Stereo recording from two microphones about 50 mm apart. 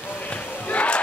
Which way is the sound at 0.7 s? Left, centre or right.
Left.